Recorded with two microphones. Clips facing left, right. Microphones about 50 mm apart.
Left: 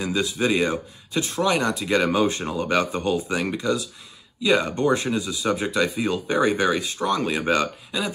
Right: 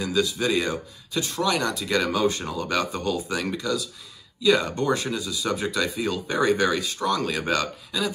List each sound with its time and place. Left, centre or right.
0.0 s speech: left